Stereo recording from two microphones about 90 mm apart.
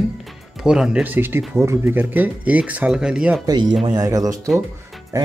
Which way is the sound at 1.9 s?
20° right (ahead or behind).